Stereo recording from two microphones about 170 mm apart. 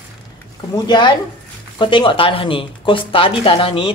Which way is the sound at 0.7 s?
25° left (ahead or behind).